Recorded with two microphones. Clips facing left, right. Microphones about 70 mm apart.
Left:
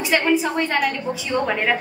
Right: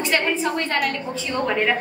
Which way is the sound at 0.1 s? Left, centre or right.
Centre.